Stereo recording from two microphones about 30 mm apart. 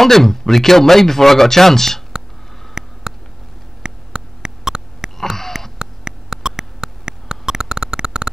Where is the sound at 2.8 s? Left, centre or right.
Right.